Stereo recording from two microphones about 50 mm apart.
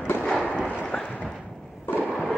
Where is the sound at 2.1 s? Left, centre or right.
Centre.